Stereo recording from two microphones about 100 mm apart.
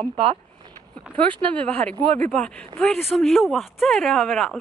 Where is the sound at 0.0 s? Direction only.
75° right (ahead or behind).